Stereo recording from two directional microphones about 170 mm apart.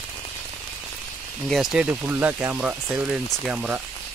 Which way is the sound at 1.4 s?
5° right (ahead or behind).